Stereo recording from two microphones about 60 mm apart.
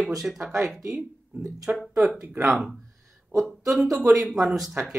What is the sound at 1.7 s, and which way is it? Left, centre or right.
Speech, right.